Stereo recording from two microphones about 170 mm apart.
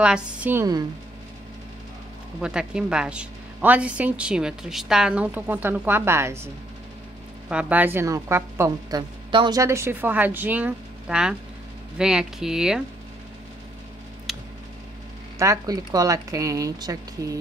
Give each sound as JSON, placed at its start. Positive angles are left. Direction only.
{"t": 0.0, "sound": "a woman's voice", "side_deg": -5}
{"t": 2.4, "sound": "a woman's voice", "side_deg": -5}
{"t": 14.3, "sound": "tick", "side_deg": 0}
{"t": 15.3, "sound": "a woman's voice", "side_deg": -20}